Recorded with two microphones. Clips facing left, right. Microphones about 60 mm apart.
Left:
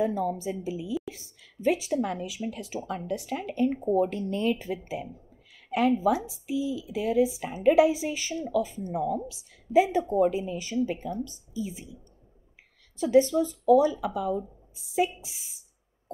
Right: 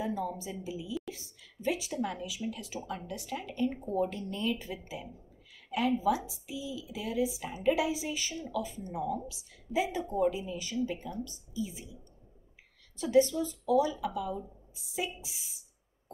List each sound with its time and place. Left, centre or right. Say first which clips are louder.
0.0 s speech: left 7 dB; left
0.7 s speech: left 6 dB; left
1.7 s speech: left 7 dB; left
9.7 s speech: left 9 dB; left
12.9 s a woman's voice: left 5 dB; left